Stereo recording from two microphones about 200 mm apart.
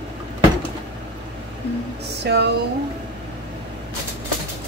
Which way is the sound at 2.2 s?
55° right (ahead or behind).